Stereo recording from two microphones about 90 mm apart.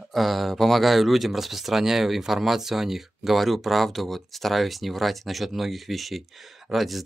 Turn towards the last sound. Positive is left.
turn(degrees=0)  # may be behind; listen again after turning